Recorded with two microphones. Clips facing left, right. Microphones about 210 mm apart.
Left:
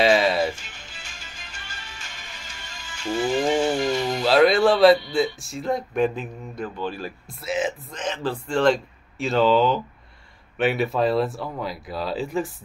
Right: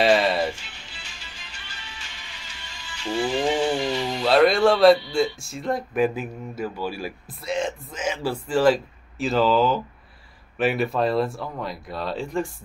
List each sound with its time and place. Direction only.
0.0 s music: centre (ahead or behind)
0.6 s music: 45° left (ahead or behind)
4.2 s music: centre (ahead or behind)
5.1 s speech: centre (ahead or behind)
7.2 s speech: centre (ahead or behind)
7.9 s speech: 10° right (ahead or behind)